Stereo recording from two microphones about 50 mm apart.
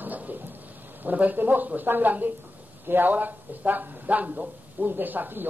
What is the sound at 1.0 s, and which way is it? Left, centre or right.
Speech, right.